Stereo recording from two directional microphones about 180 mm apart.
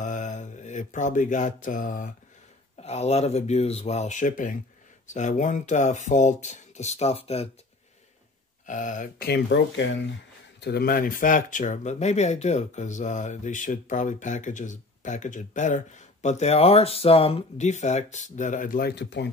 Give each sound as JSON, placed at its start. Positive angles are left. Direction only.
{"t": 0.0, "sound": "mantra", "side_deg": 40}
{"t": 2.8, "sound": "speech", "side_deg": 35}
{"t": 8.6, "sound": "speech", "side_deg": 45}
{"t": 9.3, "sound": "speech", "side_deg": 90}
{"t": 10.6, "sound": "speech", "side_deg": 60}